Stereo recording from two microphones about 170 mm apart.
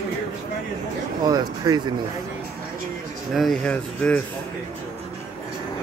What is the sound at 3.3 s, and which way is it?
Speech, centre (ahead or behind).